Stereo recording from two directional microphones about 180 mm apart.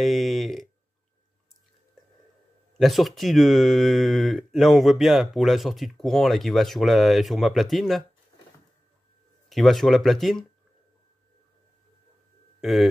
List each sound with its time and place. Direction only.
0.0 s a sound: centre (ahead or behind)
2.8 s speech: centre (ahead or behind)
9.5 s speech: centre (ahead or behind)
12.5 s bird: centre (ahead or behind)